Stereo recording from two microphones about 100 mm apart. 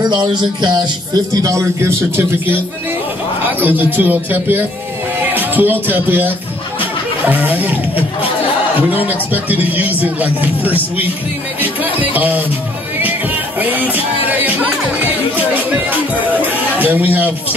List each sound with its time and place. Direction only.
0.0 s music: 50° right (ahead or behind)
1.3 s a man's voice: 35° right (ahead or behind); by 11.1 s 15° right (ahead or behind)
11.6 s music: 15° right (ahead or behind)
13.6 s speech: 15° right (ahead or behind)